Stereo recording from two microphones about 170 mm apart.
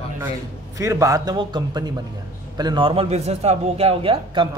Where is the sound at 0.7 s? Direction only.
20° right (ahead or behind); by 4.5 s 35° right (ahead or behind).